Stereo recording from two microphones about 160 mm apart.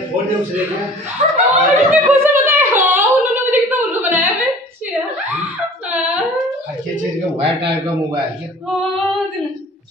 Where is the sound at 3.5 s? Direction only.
10° right (ahead or behind).